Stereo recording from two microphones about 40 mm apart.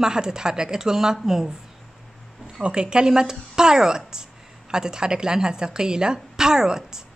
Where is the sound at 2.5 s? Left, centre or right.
Right.